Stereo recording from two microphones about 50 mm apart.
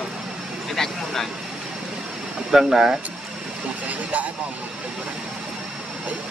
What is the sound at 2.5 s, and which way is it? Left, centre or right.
Speech, centre.